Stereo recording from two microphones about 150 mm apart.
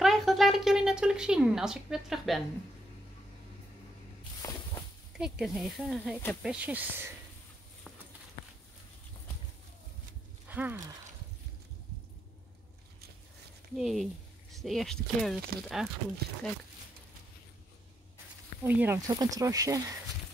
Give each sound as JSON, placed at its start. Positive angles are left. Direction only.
{"t": 0.0, "sound": "a sound", "side_deg": 0}
{"t": 4.4, "sound": "walk", "side_deg": 20}
{"t": 5.4, "sound": "speech", "side_deg": 0}
{"t": 10.5, "sound": "speech", "side_deg": -10}
{"t": 13.7, "sound": "speech", "side_deg": 0}
{"t": 18.6, "sound": "speech", "side_deg": -15}
{"t": 19.0, "sound": "speech", "side_deg": -25}